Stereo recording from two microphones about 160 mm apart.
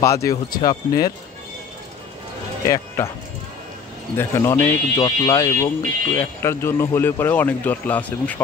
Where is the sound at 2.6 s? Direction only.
20° left (ahead or behind).